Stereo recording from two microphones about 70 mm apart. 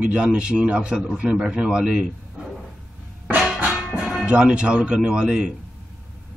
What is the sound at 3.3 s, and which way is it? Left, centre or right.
Music, right.